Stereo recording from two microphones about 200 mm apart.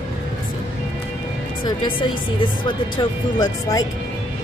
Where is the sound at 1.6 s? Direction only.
25° left (ahead or behind).